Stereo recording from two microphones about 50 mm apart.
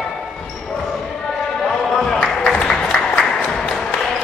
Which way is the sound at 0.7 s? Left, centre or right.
Centre.